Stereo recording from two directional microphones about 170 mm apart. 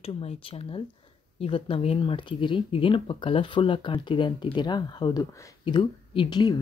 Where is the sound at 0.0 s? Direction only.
35° left (ahead or behind).